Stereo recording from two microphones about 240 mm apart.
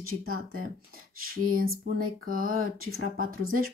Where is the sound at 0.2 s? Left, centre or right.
Right.